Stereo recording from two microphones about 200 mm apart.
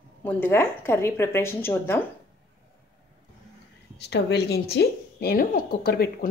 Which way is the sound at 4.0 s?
60° left (ahead or behind).